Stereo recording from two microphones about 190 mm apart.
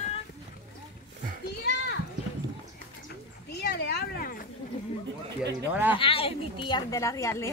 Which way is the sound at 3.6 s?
55° left (ahead or behind).